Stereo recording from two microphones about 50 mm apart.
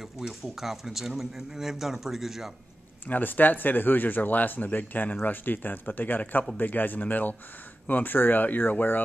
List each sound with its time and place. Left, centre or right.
0.0 s speech: centre
3.1 s speech: left